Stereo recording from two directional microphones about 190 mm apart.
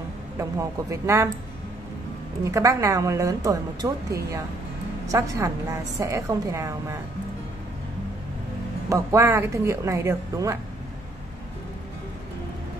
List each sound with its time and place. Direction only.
0.4 s speech: 15° right (ahead or behind)
2.5 s speech: 15° right (ahead or behind)
8.8 s speech: 15° right (ahead or behind)